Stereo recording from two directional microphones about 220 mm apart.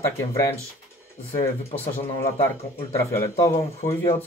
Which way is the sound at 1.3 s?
10° left (ahead or behind).